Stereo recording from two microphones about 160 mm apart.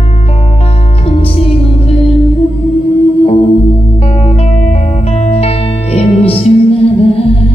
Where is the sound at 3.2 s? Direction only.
40° left (ahead or behind).